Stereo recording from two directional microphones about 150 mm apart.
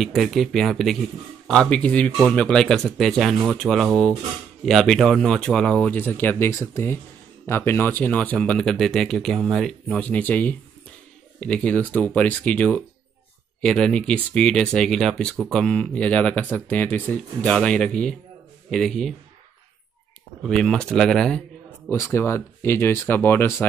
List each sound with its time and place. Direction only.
0.0 s speech: centre (ahead or behind)
20.4 s speech: 5° left (ahead or behind)
21.8 s speech: 20° left (ahead or behind)